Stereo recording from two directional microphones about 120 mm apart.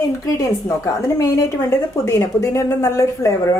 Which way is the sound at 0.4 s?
25° left (ahead or behind).